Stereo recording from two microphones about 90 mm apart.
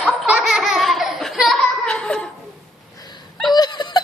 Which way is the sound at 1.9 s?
10° left (ahead or behind).